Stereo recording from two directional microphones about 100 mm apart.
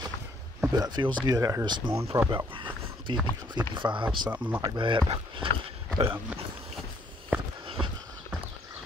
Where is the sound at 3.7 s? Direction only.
55° right (ahead or behind).